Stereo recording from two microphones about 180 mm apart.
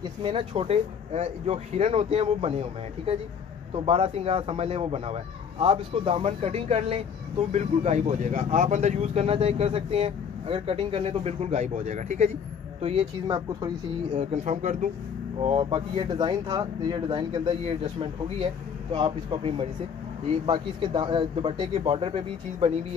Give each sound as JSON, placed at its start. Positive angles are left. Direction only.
{"t": 0.2, "sound": "speech", "side_deg": -30}
{"t": 13.3, "sound": "speech", "side_deg": -20}
{"t": 14.1, "sound": "speech", "side_deg": -40}
{"t": 15.4, "sound": "speech", "side_deg": -30}